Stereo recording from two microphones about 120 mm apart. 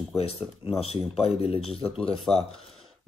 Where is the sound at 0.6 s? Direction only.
55° left (ahead or behind).